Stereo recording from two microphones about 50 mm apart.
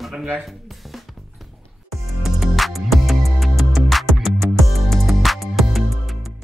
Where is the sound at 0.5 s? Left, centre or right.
Centre.